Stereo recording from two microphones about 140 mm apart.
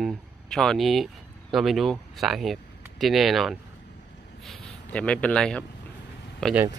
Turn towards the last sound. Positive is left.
turn(degrees=5)  # may be behind; listen again after turning